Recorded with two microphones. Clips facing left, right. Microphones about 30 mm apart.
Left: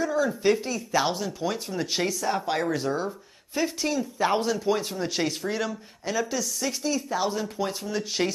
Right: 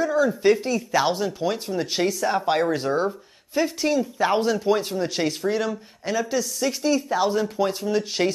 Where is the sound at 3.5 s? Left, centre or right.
Centre.